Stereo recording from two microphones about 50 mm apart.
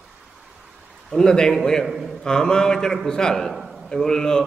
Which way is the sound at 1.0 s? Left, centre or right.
Centre.